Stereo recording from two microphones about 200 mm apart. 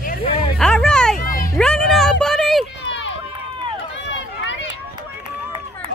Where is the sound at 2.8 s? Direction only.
65° left (ahead or behind).